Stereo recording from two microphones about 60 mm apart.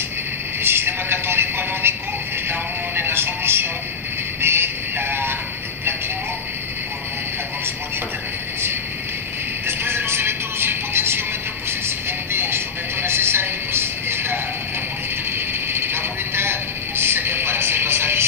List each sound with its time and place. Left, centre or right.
0.6 s speech: right
3.0 s speech: right
4.4 s music: right
9.7 s music: right
12.3 s a sound: right